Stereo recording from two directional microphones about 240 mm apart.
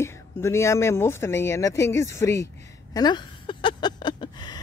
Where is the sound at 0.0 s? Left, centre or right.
Centre.